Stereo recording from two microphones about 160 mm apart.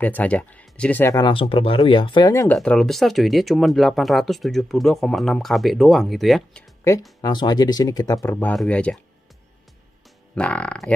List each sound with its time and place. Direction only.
0.0 s speech: 10° left (ahead or behind)
1.2 s speech: 35° left (ahead or behind)
2.3 s speech: 10° left (ahead or behind)
7.2 s speech: 25° left (ahead or behind)
8.4 s speech: 10° left (ahead or behind)
10.3 s speech: 10° left (ahead or behind)